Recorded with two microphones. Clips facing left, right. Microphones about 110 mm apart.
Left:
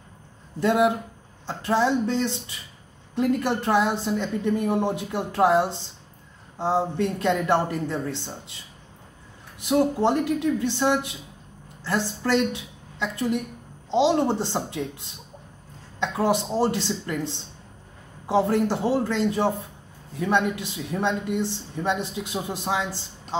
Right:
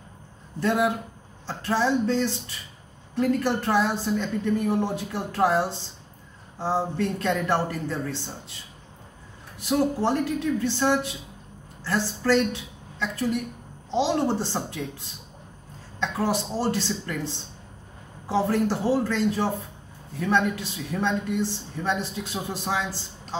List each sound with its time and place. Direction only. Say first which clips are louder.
0.6 s a woman's voice: left 3 dB; 20° left (ahead or behind)
9.7 s a woman's voice: left 2 dB; 20° left (ahead or behind)
16.0 s a woman's voice: left 3 dB; 20° left (ahead or behind)